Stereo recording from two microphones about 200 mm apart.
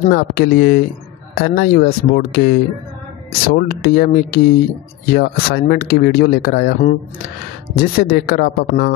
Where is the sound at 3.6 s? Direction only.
50° left (ahead or behind).